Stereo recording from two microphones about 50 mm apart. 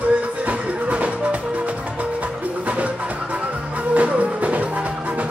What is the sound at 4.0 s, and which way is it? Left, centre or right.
Music, right.